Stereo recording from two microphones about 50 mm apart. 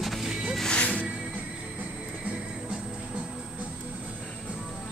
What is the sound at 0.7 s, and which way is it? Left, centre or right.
Music, left.